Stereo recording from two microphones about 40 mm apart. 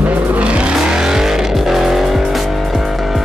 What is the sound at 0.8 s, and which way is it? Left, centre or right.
Vehicle, centre.